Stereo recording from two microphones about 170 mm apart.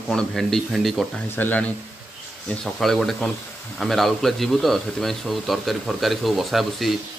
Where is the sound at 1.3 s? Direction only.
10° left (ahead or behind).